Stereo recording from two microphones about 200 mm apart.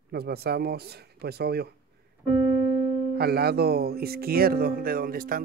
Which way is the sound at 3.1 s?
50° right (ahead or behind).